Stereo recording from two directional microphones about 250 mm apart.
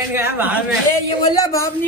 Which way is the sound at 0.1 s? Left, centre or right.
Centre.